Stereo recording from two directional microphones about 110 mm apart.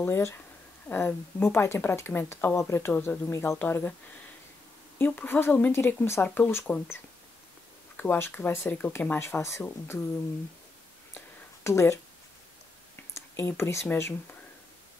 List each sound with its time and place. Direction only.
0.0 s speech: 25° left (ahead or behind)
4.9 s speech: 20° left (ahead or behind)
8.0 s speech: 20° left (ahead or behind)
11.1 s a sound: 25° left (ahead or behind)
12.9 s speech: 20° left (ahead or behind)